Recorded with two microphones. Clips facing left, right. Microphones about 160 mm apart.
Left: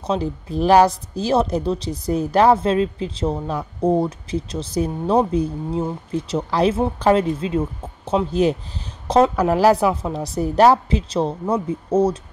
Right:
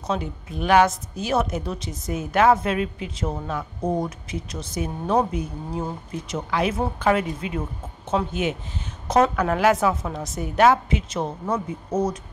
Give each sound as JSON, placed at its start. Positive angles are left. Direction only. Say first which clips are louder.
{"t": 0.0, "sound": "a woman's voice", "louder": "left 5 dB", "side_deg": 30}